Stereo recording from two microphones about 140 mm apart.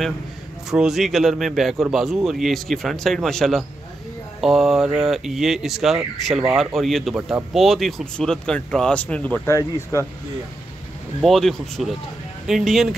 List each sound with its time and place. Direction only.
0.7 s speech: 5° right (ahead or behind); by 10.0 s 20° left (ahead or behind)
11.1 s speech: centre (ahead or behind)